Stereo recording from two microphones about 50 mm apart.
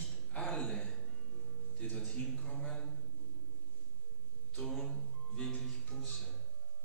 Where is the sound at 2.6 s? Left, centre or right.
Centre.